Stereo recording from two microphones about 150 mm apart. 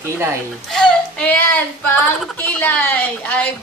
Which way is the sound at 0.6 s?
5° left (ahead or behind).